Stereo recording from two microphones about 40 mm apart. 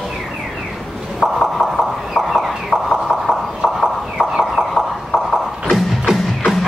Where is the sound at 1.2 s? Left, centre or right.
Centre.